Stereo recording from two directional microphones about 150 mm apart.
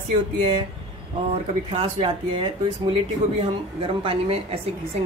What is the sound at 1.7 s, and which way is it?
Speech, 40° right (ahead or behind).